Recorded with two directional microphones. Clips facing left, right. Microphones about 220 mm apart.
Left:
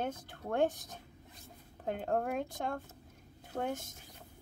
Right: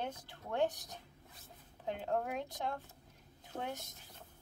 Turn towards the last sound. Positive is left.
turn(degrees=50)  # may be behind; listen again after turning